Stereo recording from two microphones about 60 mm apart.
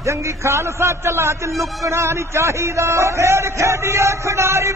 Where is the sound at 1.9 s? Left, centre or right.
Right.